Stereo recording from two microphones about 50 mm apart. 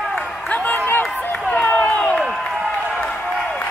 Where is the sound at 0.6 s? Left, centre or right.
Left.